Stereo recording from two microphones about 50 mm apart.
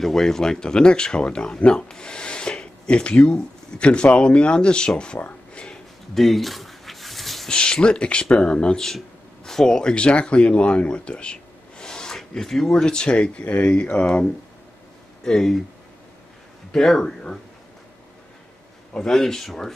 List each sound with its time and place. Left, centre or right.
0.0 s speech: centre
6.1 s a sound: centre
7.4 s a man's voice: centre
16.7 s a man's voice: centre
18.9 s a man's voice: centre